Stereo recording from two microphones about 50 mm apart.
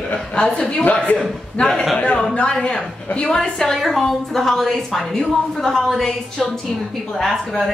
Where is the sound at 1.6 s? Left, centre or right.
Left; by 7.7 s centre.